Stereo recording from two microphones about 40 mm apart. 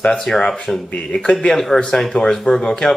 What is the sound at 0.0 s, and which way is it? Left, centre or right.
Speech, left.